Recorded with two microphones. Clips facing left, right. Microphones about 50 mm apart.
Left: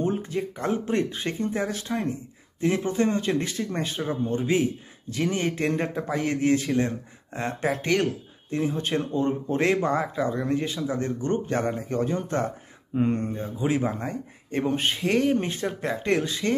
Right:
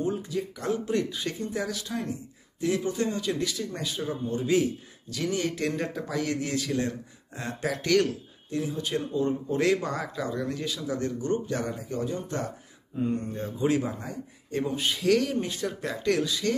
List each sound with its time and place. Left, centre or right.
0.0 s a man's voice: left
13.3 s a man's voice: centre
13.8 s a man's voice: left